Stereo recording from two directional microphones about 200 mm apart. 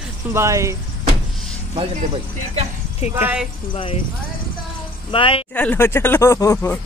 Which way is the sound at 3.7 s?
25° left (ahead or behind).